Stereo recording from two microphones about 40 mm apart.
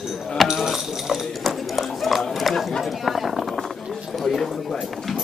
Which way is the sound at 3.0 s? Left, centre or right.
Centre.